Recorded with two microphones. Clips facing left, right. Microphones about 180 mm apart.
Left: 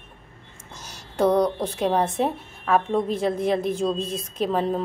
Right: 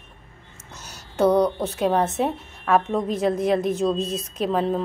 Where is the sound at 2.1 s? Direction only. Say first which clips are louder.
Even; centre (ahead or behind).